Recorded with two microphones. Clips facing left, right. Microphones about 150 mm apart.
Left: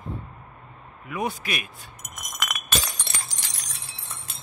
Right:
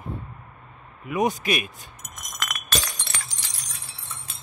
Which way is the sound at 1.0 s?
20° right (ahead or behind).